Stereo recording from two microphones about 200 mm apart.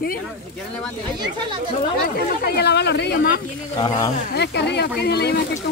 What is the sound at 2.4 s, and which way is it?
Speech, 55° left (ahead or behind).